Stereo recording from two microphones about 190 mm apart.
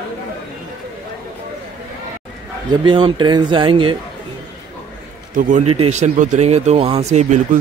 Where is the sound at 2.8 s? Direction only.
25° right (ahead or behind).